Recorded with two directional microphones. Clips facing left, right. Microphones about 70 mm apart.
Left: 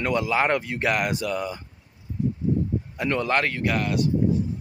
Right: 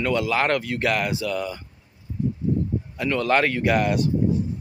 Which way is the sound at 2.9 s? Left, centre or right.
Left.